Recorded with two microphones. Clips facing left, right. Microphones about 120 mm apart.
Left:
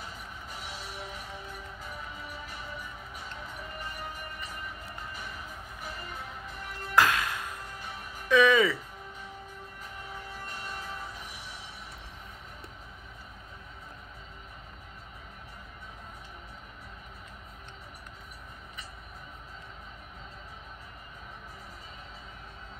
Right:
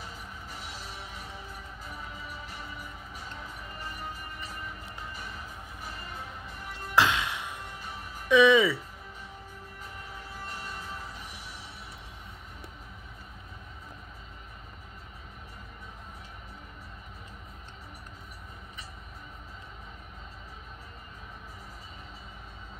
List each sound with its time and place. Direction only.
6.7 s music: 25° right (ahead or behind)
8.3 s speech: 20° right (ahead or behind)